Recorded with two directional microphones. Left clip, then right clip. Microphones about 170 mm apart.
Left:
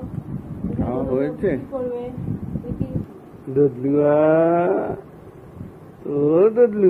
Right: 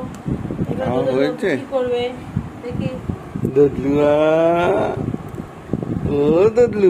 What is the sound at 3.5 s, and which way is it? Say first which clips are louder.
Speech: right 3 dB; 15° right (ahead or behind).